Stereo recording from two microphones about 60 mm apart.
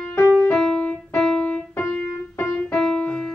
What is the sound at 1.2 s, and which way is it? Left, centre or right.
Keyboard, centre.